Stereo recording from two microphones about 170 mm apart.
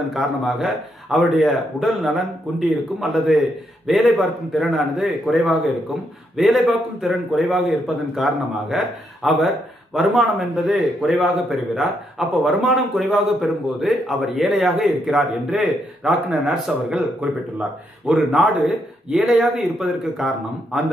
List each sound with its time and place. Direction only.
0.1 s a man's voice: centre (ahead or behind)